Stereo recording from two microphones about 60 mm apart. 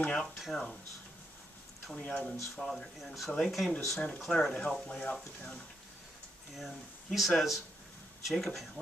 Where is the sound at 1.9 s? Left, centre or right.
Centre.